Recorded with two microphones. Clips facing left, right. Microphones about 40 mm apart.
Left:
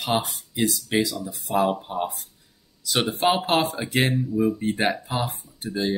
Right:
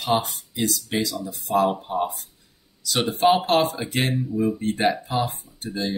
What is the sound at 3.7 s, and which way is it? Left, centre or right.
Speech, centre.